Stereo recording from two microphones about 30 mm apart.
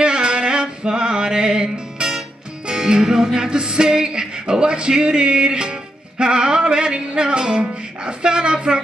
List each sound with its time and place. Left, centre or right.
0.0 s male singing: right
0.8 s music: right